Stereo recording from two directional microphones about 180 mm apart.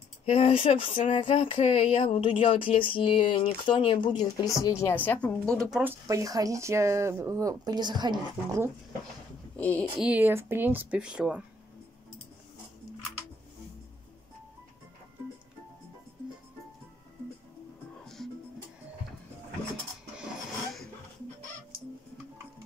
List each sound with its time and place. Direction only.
0.2 s speech: 30° left (ahead or behind)
0.9 s a sound: 30° left (ahead or behind); by 5.8 s 5° left (ahead or behind)
5.8 s speech: 15° right (ahead or behind)
9.6 s speech: 5° left (ahead or behind)
10.0 s speech: 10° right (ahead or behind)
18.0 s music: centre (ahead or behind)